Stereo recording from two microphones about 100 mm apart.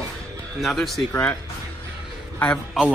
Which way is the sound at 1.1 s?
20° left (ahead or behind).